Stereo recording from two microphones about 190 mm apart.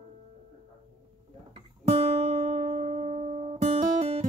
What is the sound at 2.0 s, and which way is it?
Music, 30° right (ahead or behind).